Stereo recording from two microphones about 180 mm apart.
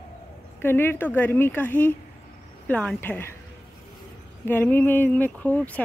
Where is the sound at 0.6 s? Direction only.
10° left (ahead or behind).